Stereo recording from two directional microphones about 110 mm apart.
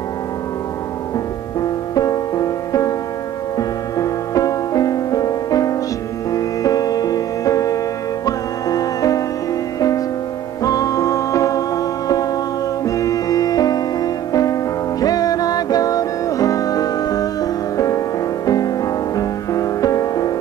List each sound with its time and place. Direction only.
1.6 s music: 35° left (ahead or behind)
19.1 s music: 30° left (ahead or behind)